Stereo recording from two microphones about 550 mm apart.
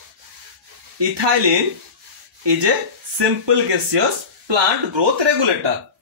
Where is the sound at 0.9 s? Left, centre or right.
Right.